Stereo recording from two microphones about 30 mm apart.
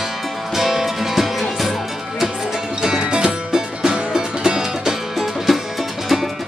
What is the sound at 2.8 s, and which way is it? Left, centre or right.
Music, right.